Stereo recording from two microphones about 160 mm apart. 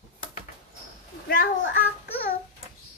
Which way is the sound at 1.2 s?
65° left (ahead or behind).